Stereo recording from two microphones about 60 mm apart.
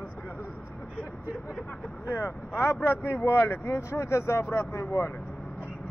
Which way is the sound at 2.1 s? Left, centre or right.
Left.